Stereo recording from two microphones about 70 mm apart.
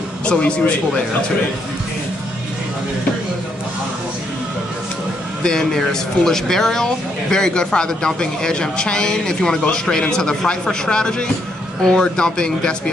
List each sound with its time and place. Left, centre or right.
0.2 s speech: centre
5.4 s speech: centre